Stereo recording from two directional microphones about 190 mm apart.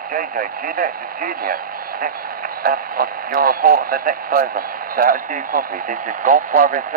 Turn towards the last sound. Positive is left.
turn(degrees=-45)  # may be behind; listen again after turning